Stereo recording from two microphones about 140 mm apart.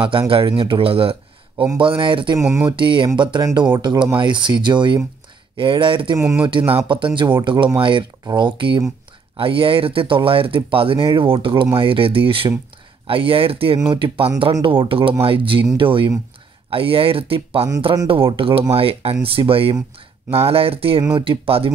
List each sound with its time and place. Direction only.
0.3 s speech: 40° right (ahead or behind)
2.3 s speech: 20° right (ahead or behind)
2.7 s speech: 35° right (ahead or behind)
6.1 s speech: 20° right (ahead or behind)
6.7 s speech: 35° right (ahead or behind)